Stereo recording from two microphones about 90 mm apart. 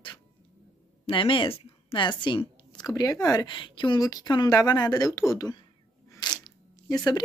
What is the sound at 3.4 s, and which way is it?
Speech, 60° left (ahead or behind).